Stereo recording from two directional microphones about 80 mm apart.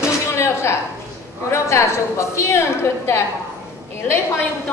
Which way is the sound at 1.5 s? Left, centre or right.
Left.